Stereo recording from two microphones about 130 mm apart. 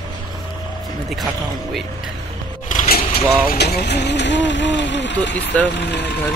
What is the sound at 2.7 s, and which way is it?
Vehicle, 80° left.